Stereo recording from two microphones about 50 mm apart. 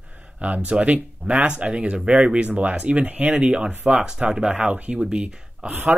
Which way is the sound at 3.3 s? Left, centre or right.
Centre.